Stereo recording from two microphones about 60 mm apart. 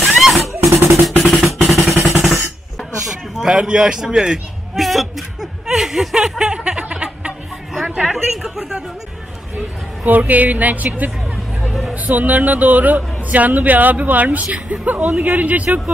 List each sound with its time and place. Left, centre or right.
0.0 s music: centre
1.7 s a sound: centre
3.4 s a man's voice: centre
4.7 s a sound: centre
7.7 s a woman's voice: centre
10.0 s a man's voice: right